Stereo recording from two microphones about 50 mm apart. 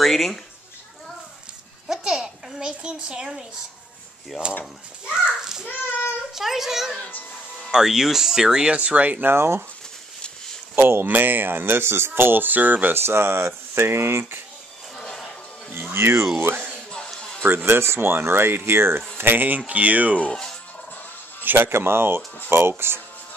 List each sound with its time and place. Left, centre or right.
0.0 s a child's voice: centre
1.9 s a child's voice: centre
5.0 s a child's voice: centre
8.7 s a child's voice: right
9.2 s speech: right
10.8 s speech: right
11.1 s speech: right
12.9 s speech: right
15.0 s a sound: centre
15.7 s speech: right
17.6 s speech: right
19.1 s speech: right
21.5 s speech: right